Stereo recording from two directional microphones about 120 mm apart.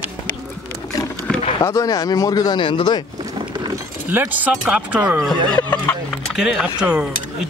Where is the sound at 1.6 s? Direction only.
25° left (ahead or behind).